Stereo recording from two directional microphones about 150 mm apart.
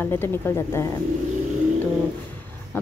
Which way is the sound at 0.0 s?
15° left (ahead or behind).